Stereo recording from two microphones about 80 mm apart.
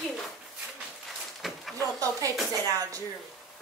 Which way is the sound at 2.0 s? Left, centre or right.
Right.